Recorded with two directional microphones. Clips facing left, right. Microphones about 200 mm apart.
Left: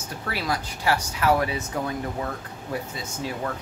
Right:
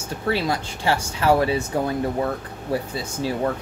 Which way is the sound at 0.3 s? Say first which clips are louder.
Right 6 dB; 25° right (ahead or behind).